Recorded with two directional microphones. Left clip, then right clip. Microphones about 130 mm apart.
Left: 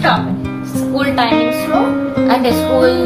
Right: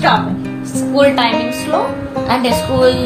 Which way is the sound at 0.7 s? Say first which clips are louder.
Right 4 dB; 25° right (ahead or behind).